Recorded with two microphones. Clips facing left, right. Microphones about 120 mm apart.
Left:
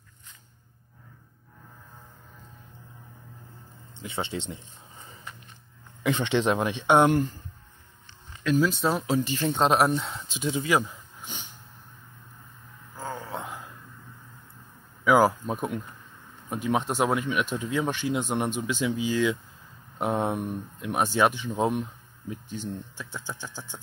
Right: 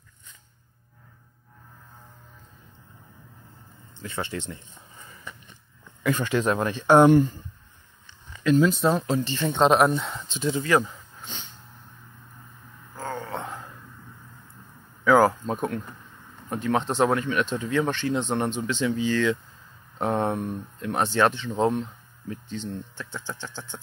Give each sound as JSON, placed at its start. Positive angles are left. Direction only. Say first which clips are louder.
{"t": 4.0, "sound": "speech", "louder": "even", "side_deg": 20}
{"t": 6.0, "sound": "speech", "louder": "even", "side_deg": 25}
{"t": 8.5, "sound": "speech", "louder": "right 4 dB", "side_deg": 0}
{"t": 10.9, "sound": "a sound", "louder": "right 1 dB", "side_deg": 10}
{"t": 12.9, "sound": "a sound", "louder": "right 2 dB", "side_deg": 5}
{"t": 15.0, "sound": "speech", "louder": "right 2 dB", "side_deg": 10}